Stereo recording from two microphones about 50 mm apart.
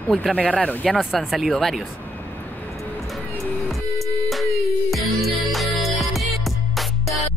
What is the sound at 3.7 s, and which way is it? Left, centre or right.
Music, centre.